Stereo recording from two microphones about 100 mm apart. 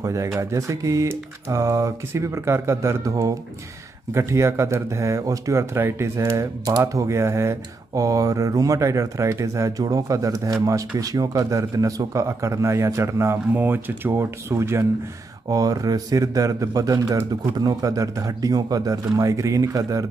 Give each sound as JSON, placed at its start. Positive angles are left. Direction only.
{"t": 0.0, "sound": "speech", "side_deg": -30}
{"t": 15.5, "sound": "speech", "side_deg": -40}